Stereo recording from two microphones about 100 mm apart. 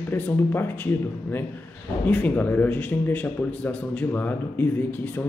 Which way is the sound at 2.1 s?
15° left (ahead or behind).